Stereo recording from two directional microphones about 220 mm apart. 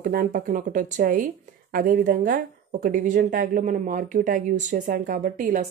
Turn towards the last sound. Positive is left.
turn(degrees=-40)  # may be behind; listen again after turning